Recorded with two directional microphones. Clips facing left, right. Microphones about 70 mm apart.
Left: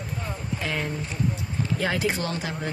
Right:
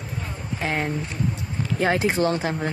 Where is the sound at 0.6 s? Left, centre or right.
Right.